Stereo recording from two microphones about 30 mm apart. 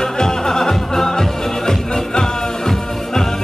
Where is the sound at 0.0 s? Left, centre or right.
Centre.